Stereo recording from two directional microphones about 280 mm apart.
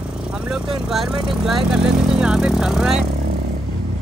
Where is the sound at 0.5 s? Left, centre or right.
Centre.